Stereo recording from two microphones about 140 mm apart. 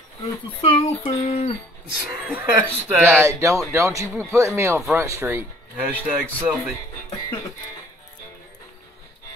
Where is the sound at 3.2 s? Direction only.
20° right (ahead or behind).